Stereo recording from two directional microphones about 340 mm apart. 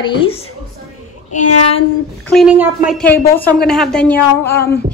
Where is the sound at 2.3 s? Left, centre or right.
Centre.